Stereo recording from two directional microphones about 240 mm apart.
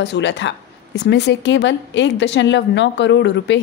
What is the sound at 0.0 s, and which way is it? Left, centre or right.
Speech, left.